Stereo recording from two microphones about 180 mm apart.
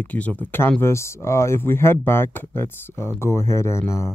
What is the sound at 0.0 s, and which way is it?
Speech, 10° left (ahead or behind).